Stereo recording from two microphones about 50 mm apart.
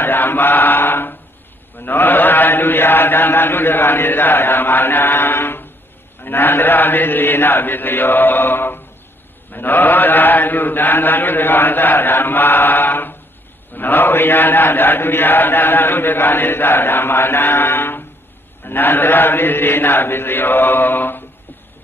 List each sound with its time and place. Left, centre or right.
0.0 s chant: left
9.5 s mantra: left
13.7 s chant: left